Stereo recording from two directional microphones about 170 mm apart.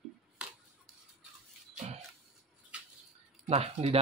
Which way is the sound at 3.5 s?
40° right (ahead or behind).